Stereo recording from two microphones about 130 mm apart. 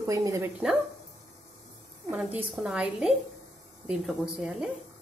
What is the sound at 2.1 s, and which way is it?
A woman's voice, 5° right (ahead or behind).